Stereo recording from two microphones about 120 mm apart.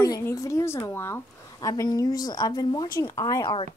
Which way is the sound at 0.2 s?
25° left (ahead or behind).